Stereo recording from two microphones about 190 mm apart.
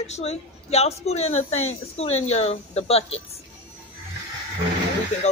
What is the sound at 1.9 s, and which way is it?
A woman's voice, 35° left (ahead or behind).